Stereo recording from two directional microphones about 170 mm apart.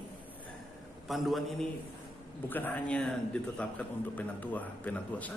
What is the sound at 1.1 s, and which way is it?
Speech, centre (ahead or behind).